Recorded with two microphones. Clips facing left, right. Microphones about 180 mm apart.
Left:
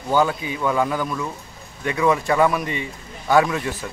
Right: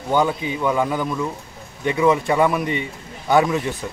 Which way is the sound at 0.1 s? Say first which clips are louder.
Even; 20° right (ahead or behind).